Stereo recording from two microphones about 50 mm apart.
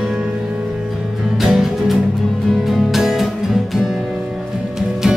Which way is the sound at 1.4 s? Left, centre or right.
Centre.